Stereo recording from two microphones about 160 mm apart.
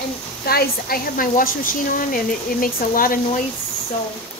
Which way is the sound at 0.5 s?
70° left (ahead or behind).